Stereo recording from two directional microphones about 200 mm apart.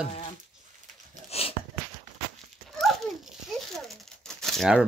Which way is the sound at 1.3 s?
30° left (ahead or behind).